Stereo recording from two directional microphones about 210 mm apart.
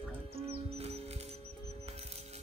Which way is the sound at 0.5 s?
30° right (ahead or behind).